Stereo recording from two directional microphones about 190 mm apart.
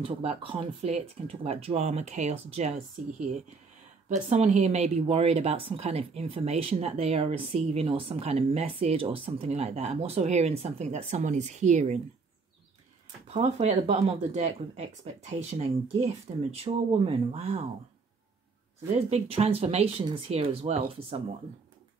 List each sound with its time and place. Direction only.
0.0 s speech: 30° right (ahead or behind)
4.1 s speech: 35° right (ahead or behind)
13.3 s speech: 35° right (ahead or behind)
18.9 s speech: 35° right (ahead or behind)